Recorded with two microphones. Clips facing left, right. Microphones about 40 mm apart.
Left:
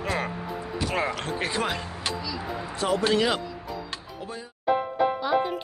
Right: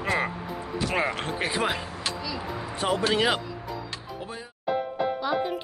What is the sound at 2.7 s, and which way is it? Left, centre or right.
Speech, right.